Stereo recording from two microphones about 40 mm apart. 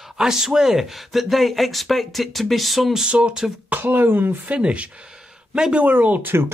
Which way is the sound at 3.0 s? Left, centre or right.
Right.